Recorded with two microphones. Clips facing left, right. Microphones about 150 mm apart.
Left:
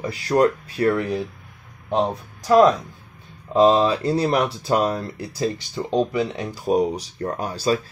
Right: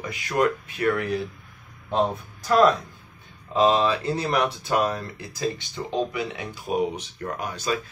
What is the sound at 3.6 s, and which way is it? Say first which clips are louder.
Speech: left 4 dB; 30° left (ahead or behind).